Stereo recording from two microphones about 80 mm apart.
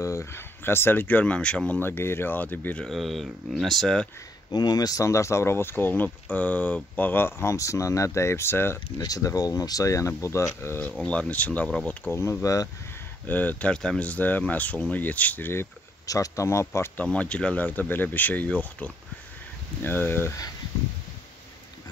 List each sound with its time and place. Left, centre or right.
0.0 s speech: left; by 1.8 s centre
1.8 s speech: left
2.8 s speech: centre
4.5 s speech: left
8.9 s speech: left
10.8 s speech: centre
12.1 s speech: left
13.3 s speech: left
16.1 s speech: left
16.9 s speech: centre
17.6 s speech: left